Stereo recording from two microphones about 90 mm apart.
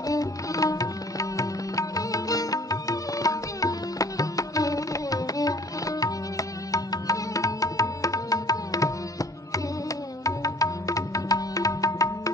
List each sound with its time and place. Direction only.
0.0 s music: 40° left (ahead or behind)